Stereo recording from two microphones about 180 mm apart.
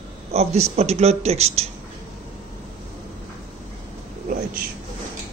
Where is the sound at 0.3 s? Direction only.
35° right (ahead or behind).